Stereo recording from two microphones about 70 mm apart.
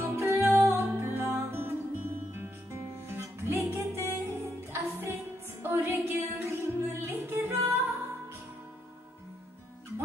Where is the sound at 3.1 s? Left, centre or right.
Right.